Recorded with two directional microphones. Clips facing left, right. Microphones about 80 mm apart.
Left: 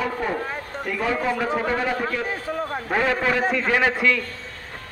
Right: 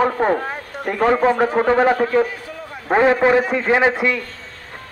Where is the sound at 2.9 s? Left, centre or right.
Right.